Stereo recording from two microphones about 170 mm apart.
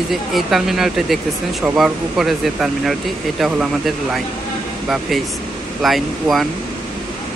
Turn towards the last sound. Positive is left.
turn(degrees=0)  # may be behind; listen again after turning